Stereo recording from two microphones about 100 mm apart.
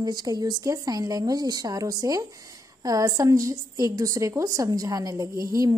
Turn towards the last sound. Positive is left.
turn(degrees=-35)  # may be behind; listen again after turning